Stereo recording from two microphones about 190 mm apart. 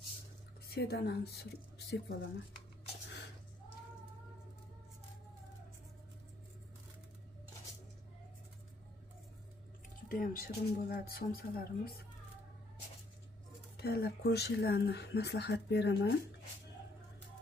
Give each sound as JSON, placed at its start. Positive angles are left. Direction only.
{"t": 0.7, "sound": "speech", "side_deg": 55}
{"t": 10.0, "sound": "speech", "side_deg": 50}
{"t": 13.7, "sound": "speech", "side_deg": 55}